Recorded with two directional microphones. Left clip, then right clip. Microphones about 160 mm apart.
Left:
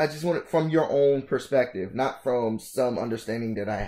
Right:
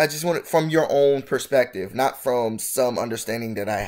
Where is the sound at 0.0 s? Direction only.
15° right (ahead or behind).